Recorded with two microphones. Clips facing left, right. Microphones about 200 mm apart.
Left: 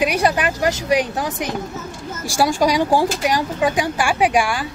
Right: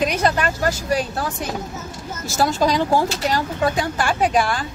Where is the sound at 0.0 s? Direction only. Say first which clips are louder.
Left 1 dB; 10° left (ahead or behind).